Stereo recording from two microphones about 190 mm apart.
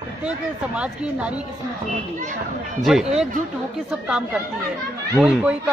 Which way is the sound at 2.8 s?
Centre (ahead or behind).